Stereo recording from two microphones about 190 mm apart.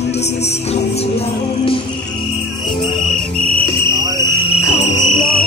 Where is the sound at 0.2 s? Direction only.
35° left (ahead or behind).